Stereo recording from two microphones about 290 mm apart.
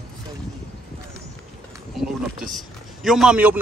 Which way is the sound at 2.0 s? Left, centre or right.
Centre.